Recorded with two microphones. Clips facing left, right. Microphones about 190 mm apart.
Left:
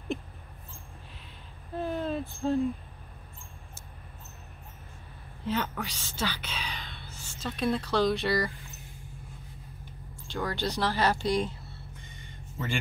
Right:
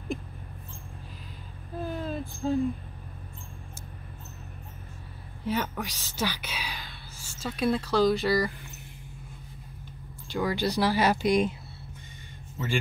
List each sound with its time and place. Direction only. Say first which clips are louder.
1.8 s a sound: left 2 dB; centre (ahead or behind)
5.4 s speech: right 1 dB; 10° right (ahead or behind)
10.2 s speech: right 4 dB; 10° right (ahead or behind)